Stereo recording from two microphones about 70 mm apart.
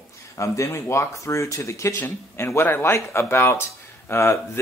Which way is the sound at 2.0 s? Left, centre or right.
Left.